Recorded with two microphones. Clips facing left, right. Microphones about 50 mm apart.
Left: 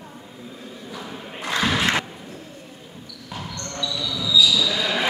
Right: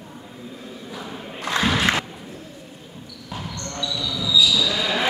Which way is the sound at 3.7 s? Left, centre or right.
Centre.